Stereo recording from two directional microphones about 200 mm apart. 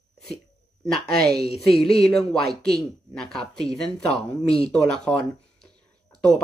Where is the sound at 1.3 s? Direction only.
30° left (ahead or behind).